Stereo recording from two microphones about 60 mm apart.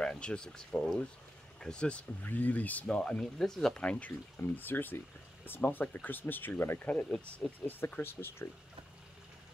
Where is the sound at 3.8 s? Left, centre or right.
Left.